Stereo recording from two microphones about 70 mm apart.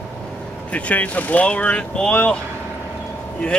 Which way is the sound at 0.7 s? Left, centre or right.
Left.